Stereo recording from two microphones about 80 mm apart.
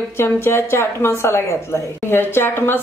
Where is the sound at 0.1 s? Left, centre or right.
Left.